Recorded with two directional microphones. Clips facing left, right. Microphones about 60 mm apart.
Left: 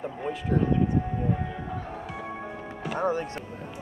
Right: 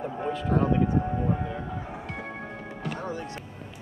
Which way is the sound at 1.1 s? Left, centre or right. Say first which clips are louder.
Right 1 dB; centre.